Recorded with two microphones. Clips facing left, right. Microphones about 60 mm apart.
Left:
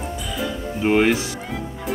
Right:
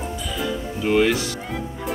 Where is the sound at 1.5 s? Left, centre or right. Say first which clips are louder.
Even; centre.